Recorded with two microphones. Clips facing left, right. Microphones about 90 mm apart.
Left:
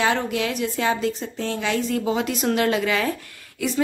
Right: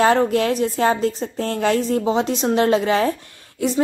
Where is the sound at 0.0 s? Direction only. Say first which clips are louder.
Right 6 dB; 40° right (ahead or behind).